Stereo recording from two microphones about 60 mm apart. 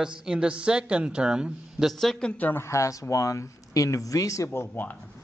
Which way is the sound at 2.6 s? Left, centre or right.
Left.